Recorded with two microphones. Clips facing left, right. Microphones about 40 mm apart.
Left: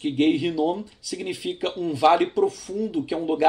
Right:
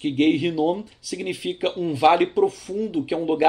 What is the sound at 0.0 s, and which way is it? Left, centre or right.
Speech, centre.